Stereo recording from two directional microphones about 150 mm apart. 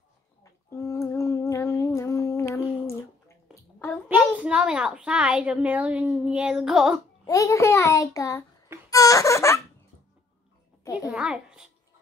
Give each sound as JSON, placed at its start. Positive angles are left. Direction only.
{"t": 0.4, "sound": "humming", "side_deg": 20}
{"t": 4.1, "sound": "a child's voice", "side_deg": -10}
{"t": 7.2, "sound": "a child's voice", "side_deg": 20}
{"t": 8.9, "sound": "a sound", "side_deg": 20}
{"t": 11.1, "sound": "a child's voice", "side_deg": -5}